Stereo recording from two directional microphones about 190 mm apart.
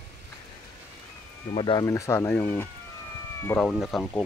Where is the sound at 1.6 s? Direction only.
25° left (ahead or behind).